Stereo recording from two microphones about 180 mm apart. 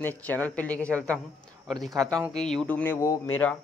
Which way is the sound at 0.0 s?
10° left (ahead or behind).